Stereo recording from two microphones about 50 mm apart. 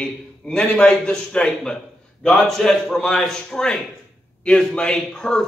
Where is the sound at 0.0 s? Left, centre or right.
Centre.